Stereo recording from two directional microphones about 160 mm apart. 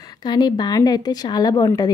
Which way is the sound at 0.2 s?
25° left (ahead or behind).